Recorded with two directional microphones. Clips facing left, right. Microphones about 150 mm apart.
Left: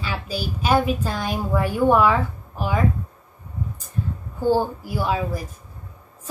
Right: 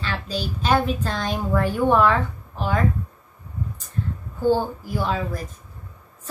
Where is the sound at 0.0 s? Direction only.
10° left (ahead or behind).